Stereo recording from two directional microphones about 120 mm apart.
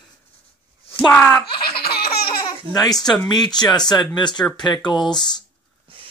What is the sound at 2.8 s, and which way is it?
Speech, 30° left (ahead or behind).